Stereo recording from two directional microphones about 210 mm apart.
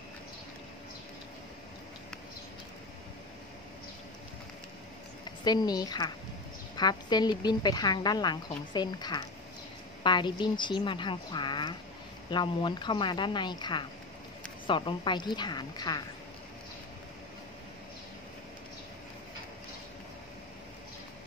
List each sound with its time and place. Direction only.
5.4 s a woman's voice: 20° left (ahead or behind)